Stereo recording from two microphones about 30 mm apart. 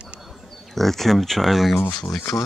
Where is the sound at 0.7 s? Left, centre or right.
Centre.